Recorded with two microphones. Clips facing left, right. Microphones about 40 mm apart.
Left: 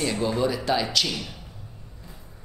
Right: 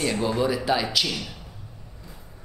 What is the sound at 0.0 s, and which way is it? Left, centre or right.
Speech, centre.